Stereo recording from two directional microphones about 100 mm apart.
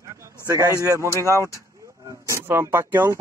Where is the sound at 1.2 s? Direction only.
30° left (ahead or behind).